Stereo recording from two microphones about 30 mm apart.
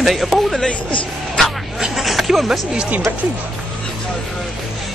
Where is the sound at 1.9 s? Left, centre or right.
Centre.